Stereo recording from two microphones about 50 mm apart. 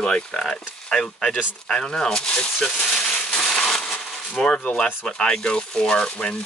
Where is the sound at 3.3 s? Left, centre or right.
Centre.